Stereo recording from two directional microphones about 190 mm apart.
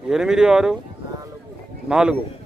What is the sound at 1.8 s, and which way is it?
Speech, 5° right (ahead or behind).